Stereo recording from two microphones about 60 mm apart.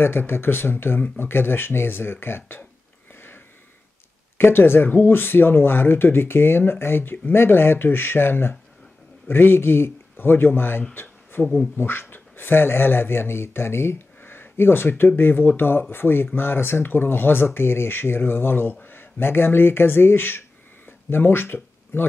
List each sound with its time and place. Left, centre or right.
0.0 s speech: left
3.2 s a sound: left
4.4 s speech: left